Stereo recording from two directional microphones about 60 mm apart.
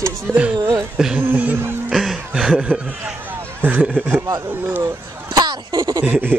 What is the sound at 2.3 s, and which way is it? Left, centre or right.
Snicker, centre.